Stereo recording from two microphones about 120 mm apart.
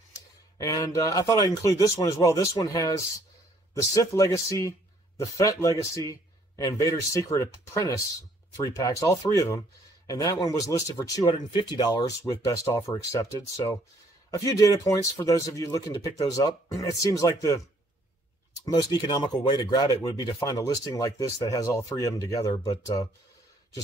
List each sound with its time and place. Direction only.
0.6 s speech: 30° left (ahead or behind)
11.3 s speech: 35° left (ahead or behind)
18.7 s speech: 35° left (ahead or behind)